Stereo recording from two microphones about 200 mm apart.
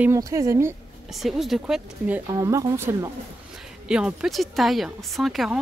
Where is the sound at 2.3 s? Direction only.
15° right (ahead or behind).